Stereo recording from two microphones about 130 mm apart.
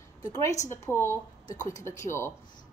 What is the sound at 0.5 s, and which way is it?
Speech, 65° left (ahead or behind).